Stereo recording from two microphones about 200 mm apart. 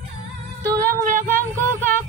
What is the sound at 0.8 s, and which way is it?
Music, 45° right (ahead or behind).